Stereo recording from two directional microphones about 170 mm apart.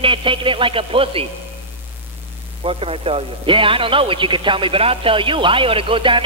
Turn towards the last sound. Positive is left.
turn(degrees=-30)  # may be behind; listen again after turning